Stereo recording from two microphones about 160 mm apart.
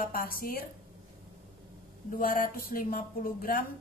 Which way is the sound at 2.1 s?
60° left (ahead or behind).